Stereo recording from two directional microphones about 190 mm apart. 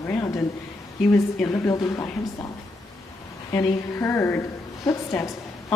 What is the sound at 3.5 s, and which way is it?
Speech, 15° left (ahead or behind).